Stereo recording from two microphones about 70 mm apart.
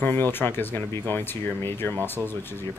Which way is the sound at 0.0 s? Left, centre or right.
Left.